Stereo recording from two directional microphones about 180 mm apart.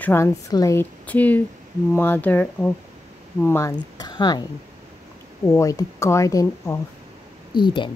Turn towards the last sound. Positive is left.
turn(degrees=25)  # may be behind; listen again after turning